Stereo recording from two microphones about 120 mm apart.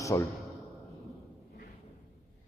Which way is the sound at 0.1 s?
25° left (ahead or behind).